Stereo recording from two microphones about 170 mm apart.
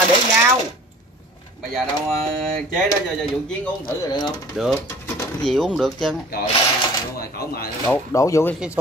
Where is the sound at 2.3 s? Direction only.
5° left (ahead or behind).